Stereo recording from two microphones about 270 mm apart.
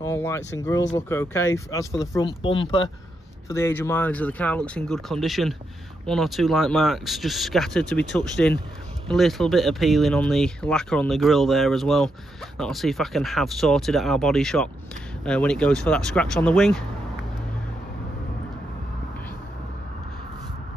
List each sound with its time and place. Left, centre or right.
0.0 s speech: centre